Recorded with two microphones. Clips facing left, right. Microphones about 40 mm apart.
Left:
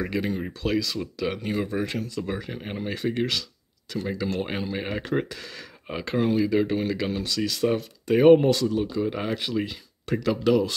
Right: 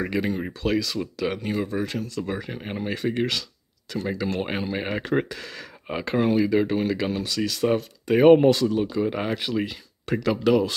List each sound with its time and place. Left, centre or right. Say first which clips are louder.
0.0 s speech: right 2 dB; centre
0.7 s speech: right 1 dB; centre
1.7 s speech: even; centre
2.2 s speech: right 1 dB; centre
4.2 s speech: right 1 dB; right
7.6 s speech: right 2 dB; right